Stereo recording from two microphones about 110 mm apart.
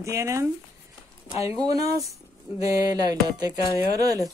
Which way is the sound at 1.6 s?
30° right (ahead or behind).